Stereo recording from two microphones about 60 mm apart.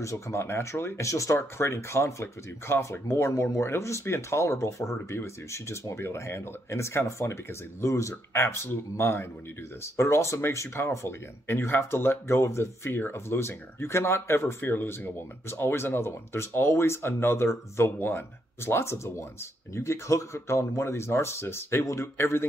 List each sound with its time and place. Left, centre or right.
0.0 s speech: left